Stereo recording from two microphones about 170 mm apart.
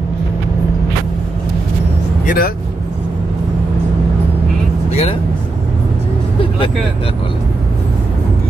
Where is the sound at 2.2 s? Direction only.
60° left (ahead or behind).